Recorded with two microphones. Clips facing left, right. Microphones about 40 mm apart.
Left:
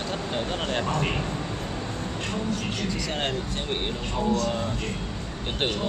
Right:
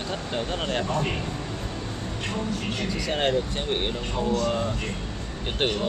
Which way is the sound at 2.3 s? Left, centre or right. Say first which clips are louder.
Right 1 dB; centre.